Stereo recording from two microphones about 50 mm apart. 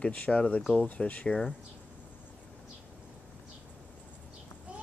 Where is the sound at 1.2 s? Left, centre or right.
Centre.